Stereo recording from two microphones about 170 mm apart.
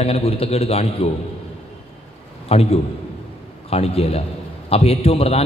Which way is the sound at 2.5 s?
35° left (ahead or behind).